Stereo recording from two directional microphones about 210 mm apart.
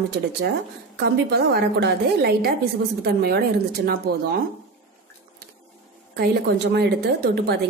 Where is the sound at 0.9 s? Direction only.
55° right (ahead or behind).